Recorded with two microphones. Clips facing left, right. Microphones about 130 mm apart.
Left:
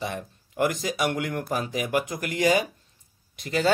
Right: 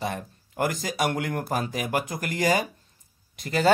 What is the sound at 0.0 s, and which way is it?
Speech, 40° right (ahead or behind).